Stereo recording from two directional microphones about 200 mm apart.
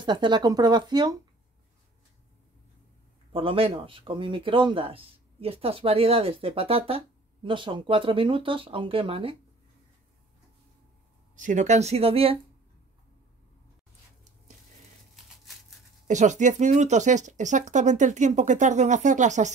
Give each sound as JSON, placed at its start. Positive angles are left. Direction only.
{"t": 0.0, "sound": "speech", "side_deg": -20}
{"t": 3.3, "sound": "speech", "side_deg": -25}
{"t": 11.3, "sound": "speech", "side_deg": -40}
{"t": 16.1, "sound": "speech", "side_deg": -35}